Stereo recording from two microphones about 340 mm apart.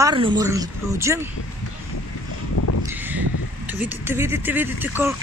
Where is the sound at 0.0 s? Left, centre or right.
Centre.